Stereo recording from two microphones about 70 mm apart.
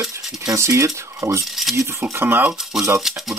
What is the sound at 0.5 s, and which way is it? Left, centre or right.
Speech, right.